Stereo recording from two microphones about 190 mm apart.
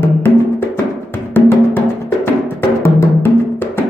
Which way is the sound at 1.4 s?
10° left (ahead or behind).